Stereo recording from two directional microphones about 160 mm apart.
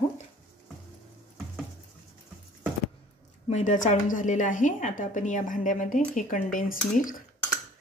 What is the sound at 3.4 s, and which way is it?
A woman's voice, 50° left (ahead or behind).